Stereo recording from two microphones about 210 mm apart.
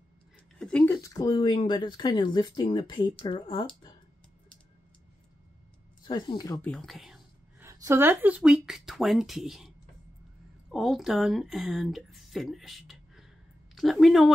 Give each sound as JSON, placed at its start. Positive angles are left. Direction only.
{"t": 0.6, "sound": "speech", "side_deg": 5}
{"t": 6.0, "sound": "speech", "side_deg": 20}
{"t": 6.6, "sound": "speech", "side_deg": 5}
{"t": 10.7, "sound": "speech", "side_deg": 0}